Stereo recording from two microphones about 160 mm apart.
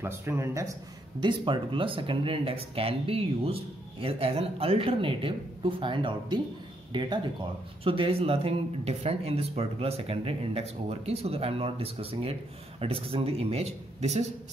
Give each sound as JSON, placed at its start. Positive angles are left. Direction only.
{"t": 0.0, "sound": "a man's voice", "side_deg": -15}
{"t": 1.2, "sound": "speech", "side_deg": -30}